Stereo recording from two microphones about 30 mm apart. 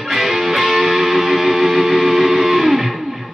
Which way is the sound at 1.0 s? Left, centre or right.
Centre.